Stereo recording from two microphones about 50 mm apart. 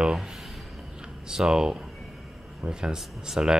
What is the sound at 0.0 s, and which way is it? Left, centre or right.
Speech, centre.